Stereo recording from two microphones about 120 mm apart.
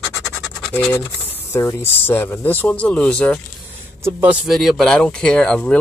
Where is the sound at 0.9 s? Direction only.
20° left (ahead or behind).